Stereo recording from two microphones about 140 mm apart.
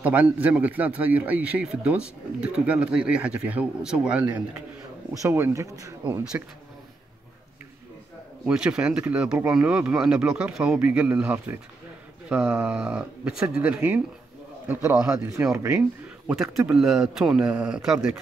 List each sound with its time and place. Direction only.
0.0 s speech: 10° right (ahead or behind)
5.2 s speech: 20° right (ahead or behind)
8.5 s speech: 5° right (ahead or behind)
16.5 s a man's voice: 5° right (ahead or behind)